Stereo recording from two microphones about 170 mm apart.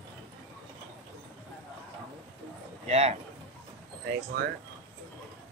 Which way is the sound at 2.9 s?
40° right (ahead or behind).